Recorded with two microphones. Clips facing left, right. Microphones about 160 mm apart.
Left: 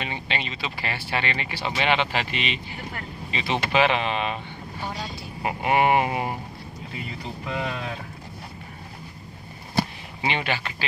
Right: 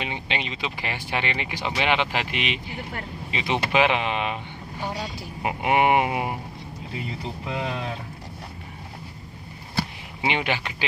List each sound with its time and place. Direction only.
0.0 s speech: 15° right (ahead or behind)
7.4 s speech: 25° right (ahead or behind)
10.2 s speech: 15° right (ahead or behind)